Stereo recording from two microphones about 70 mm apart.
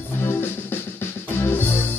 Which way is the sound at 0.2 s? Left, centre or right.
Left.